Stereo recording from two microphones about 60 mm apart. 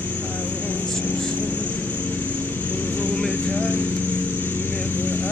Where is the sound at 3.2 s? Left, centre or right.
Centre.